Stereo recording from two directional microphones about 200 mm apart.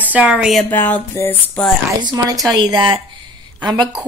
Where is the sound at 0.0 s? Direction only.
10° right (ahead or behind).